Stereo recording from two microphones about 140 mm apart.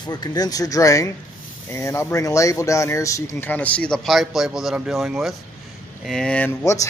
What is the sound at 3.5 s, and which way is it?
A man's voice, 10° left (ahead or behind).